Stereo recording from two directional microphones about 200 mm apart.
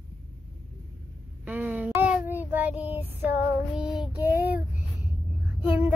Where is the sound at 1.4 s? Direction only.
10° right (ahead or behind).